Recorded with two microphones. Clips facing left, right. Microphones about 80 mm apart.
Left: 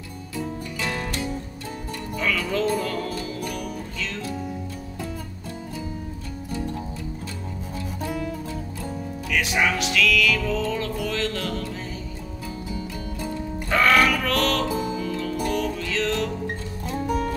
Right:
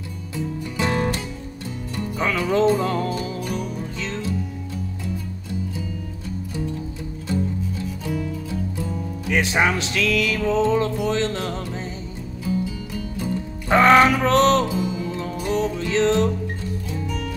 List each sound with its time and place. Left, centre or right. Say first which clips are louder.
0.7 s music: right 7 dB; right
8.0 s music: even; left
9.3 s music: right 3 dB; right
13.2 s music: right 1 dB; right
14.7 s music: right 1 dB; left
15.0 s music: left 1 dB; right
16.9 s music: left 8 dB; left